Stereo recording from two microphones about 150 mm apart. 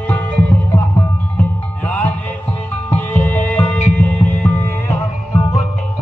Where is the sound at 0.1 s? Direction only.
10° left (ahead or behind).